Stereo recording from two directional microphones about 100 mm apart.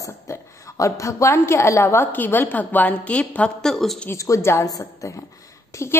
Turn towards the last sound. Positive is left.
turn(degrees=30)  # may be behind; listen again after turning